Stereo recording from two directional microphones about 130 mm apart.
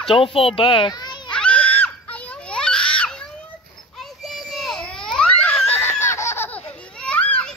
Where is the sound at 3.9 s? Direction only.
Centre (ahead or behind).